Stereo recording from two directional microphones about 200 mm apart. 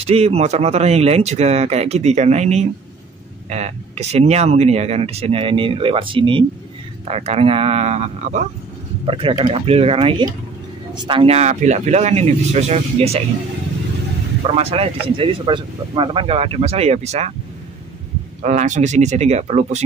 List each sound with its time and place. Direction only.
0.0 s speech: 30° right (ahead or behind)
14.4 s speech: 30° right (ahead or behind)
18.4 s speech: 35° right (ahead or behind)